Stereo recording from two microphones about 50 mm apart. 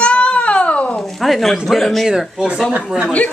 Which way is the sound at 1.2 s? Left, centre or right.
Centre.